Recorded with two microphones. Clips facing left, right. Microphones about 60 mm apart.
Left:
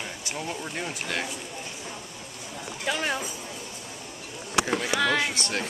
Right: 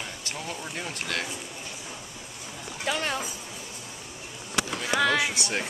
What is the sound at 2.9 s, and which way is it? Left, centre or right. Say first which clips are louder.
Speech: left 1 dB; centre.